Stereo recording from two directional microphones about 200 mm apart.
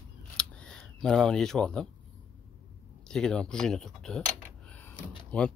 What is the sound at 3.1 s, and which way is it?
Speech, 5° left (ahead or behind).